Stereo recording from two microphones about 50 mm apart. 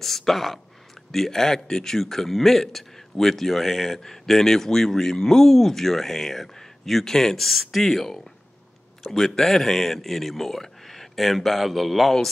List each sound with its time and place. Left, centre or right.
0.0 s a man's voice: centre